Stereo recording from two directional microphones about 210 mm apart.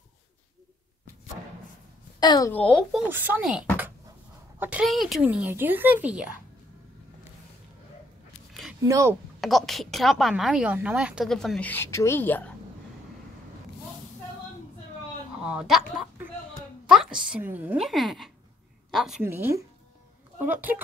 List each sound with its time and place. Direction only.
2.1 s a woman's voice: 20° left (ahead or behind)
2.5 s a woman's voice: 5° left (ahead or behind)
3.1 s speech: 10° right (ahead or behind)
8.8 s speech: 15° right (ahead or behind)
9.4 s a woman's voice: centre (ahead or behind)
15.4 s a woman's voice: 5° right (ahead or behind)